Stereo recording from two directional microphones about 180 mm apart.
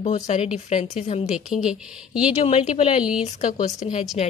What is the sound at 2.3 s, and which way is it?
Speech, 35° left (ahead or behind).